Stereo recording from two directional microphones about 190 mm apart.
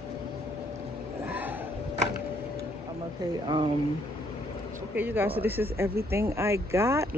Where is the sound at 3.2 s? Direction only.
20° right (ahead or behind).